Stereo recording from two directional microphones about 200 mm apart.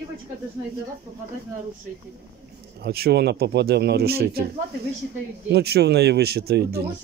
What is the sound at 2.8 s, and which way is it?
Speech, 50° right (ahead or behind).